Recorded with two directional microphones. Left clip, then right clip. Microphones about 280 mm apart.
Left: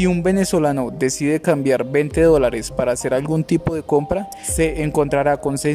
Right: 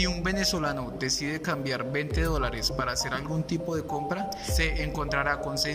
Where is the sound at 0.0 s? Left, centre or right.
Left.